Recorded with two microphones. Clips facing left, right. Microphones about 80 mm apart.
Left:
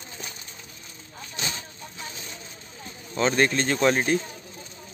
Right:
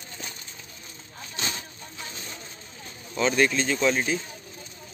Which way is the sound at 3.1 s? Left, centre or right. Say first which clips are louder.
Left 1 dB; left.